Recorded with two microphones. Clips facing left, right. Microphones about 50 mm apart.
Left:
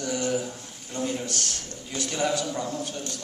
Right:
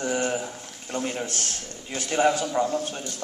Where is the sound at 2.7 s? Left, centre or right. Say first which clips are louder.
Right 3 dB; right.